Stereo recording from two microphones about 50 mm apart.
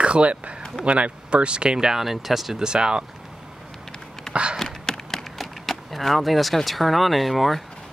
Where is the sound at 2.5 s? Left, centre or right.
Centre.